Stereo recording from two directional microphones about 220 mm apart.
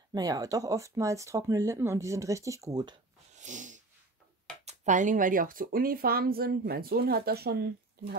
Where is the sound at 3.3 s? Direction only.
35° right (ahead or behind).